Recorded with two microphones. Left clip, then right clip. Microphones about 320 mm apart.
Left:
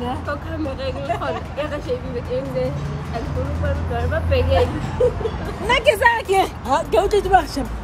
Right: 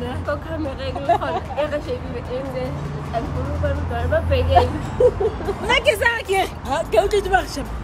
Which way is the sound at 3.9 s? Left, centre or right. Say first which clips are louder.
Even; centre.